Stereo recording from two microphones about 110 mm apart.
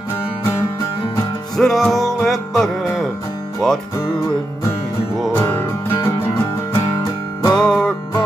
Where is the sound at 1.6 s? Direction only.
Centre (ahead or behind).